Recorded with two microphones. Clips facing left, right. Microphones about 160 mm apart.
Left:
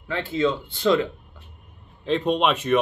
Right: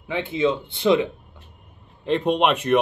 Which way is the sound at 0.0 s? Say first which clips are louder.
Right 1 dB; 20° right (ahead or behind).